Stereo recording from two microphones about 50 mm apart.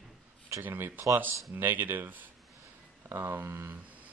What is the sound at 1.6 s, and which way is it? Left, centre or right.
Speech, right.